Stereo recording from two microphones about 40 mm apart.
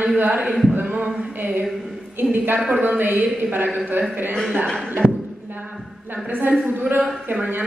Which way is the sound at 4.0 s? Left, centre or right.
Right.